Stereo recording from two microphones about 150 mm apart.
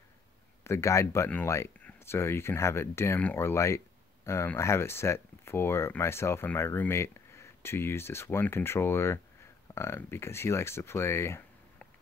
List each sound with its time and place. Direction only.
0.7 s speech: 20° left (ahead or behind)